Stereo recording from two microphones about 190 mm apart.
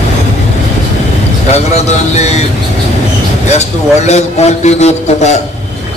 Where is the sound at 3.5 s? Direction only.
35° left (ahead or behind).